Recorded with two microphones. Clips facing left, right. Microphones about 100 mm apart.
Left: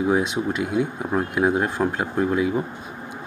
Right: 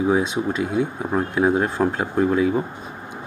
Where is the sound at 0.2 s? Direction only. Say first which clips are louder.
Right 1 dB; 15° left (ahead or behind).